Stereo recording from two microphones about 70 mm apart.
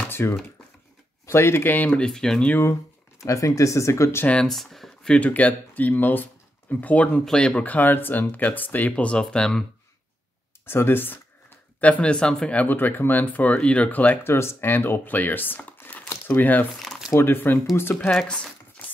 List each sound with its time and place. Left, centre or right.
0.1 s a sound: left
1.2 s speech: left
2.0 s speech: centre
2.6 s speech: left
4.5 s speech: centre
5.2 s speech: left
10.7 s speech: left
11.8 s speech: centre
12.5 s speech: left
14.2 s speech: left